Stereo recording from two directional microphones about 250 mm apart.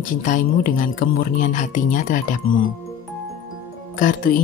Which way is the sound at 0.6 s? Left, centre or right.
Left.